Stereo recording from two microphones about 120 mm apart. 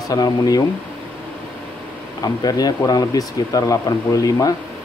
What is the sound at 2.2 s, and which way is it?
Speech, 30° left (ahead or behind).